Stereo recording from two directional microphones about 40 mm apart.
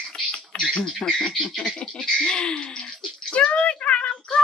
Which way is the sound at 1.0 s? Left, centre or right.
Centre.